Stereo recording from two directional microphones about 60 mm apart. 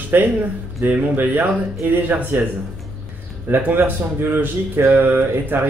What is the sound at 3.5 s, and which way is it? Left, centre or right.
A man's voice, right.